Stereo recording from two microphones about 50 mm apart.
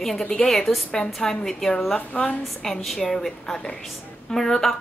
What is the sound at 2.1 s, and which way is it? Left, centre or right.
Speech, left.